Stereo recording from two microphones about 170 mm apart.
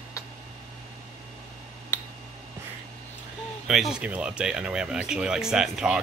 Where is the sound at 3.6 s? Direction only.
Centre (ahead or behind).